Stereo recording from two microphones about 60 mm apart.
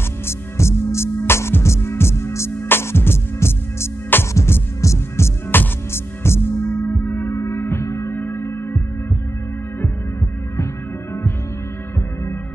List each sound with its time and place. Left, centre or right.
0.3 s music: left
5.5 s music: left
7.1 s hum: left
7.3 s music: left